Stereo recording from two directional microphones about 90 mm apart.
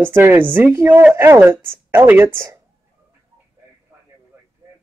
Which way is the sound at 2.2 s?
35° right (ahead or behind).